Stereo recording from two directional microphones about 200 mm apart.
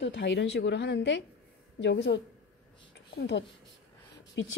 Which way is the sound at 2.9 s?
60° left (ahead or behind).